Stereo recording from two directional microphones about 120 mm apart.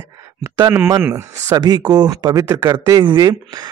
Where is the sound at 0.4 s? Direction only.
20° right (ahead or behind).